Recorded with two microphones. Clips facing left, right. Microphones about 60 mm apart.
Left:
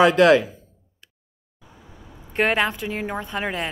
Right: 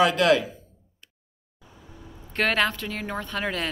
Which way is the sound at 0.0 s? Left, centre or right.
Left.